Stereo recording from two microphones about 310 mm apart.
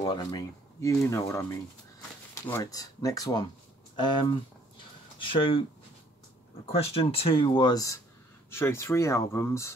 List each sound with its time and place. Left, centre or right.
0.1 s speech: centre
6.8 s speech: centre